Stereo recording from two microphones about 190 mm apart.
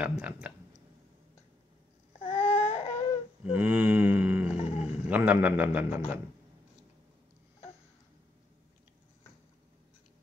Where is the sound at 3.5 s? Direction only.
10° right (ahead or behind).